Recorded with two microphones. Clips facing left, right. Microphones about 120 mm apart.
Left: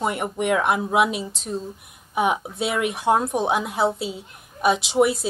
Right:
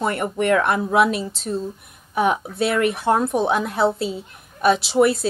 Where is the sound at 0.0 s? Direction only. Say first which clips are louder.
Right 2 dB; 10° left (ahead or behind).